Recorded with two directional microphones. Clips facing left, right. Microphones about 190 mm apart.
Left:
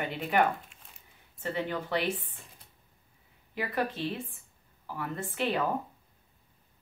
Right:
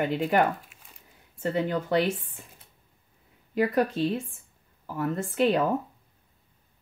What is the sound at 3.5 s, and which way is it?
Speech, 45° right (ahead or behind).